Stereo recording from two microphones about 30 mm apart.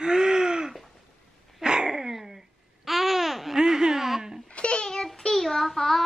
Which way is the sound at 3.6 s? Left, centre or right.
Right.